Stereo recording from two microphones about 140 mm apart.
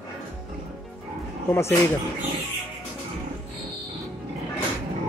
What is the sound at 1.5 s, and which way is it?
Speech, 20° left (ahead or behind).